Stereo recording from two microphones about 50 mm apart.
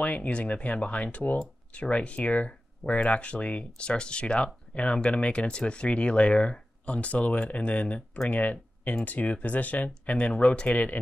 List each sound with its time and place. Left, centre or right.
0.0 s speech: left